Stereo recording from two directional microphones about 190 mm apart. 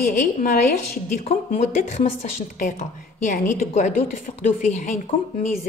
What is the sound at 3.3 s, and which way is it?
A woman's voice, 40° left (ahead or behind).